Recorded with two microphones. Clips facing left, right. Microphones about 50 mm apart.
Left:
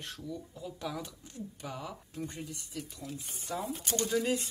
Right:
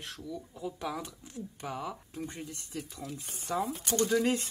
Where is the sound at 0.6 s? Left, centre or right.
Centre.